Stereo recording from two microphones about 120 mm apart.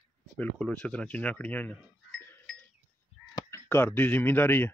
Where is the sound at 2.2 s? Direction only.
20° left (ahead or behind).